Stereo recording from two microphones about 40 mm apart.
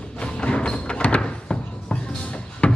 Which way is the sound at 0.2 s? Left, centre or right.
Left.